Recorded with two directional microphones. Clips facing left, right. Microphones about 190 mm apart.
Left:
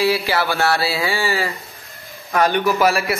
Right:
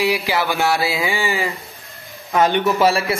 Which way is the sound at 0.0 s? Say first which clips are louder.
Left 1 dB; 15° right (ahead or behind).